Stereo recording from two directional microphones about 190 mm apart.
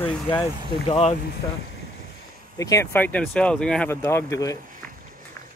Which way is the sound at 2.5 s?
15° left (ahead or behind).